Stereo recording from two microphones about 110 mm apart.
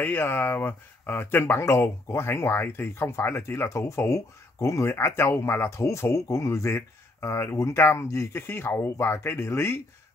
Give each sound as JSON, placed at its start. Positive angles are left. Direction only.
{"t": 0.0, "sound": "speech", "side_deg": 20}